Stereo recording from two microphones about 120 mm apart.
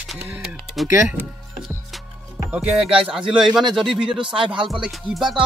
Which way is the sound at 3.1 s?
5° right (ahead or behind).